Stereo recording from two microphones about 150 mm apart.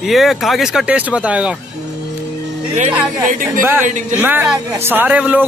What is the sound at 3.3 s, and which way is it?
Speech, 60° right (ahead or behind).